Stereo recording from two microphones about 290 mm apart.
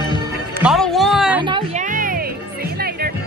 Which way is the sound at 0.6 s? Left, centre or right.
Centre.